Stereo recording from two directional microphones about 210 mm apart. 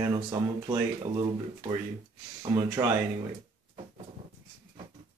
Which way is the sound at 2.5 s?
10° right (ahead or behind).